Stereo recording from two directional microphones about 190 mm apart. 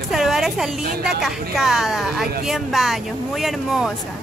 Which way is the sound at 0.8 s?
55° right (ahead or behind).